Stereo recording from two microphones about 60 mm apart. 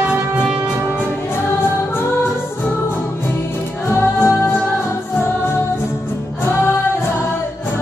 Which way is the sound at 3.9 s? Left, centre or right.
Left.